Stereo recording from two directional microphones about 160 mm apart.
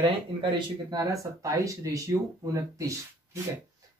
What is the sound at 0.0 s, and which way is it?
Speech, 30° right (ahead or behind).